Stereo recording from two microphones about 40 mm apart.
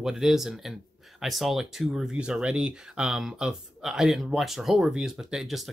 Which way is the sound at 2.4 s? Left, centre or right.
Right.